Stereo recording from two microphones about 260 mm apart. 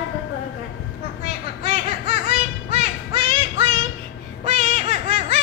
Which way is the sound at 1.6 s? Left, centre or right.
Right.